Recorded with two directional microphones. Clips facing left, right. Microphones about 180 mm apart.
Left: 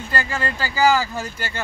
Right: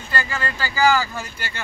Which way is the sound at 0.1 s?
40° left (ahead or behind).